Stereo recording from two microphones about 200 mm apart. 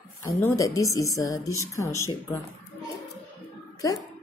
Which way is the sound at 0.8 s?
15° left (ahead or behind).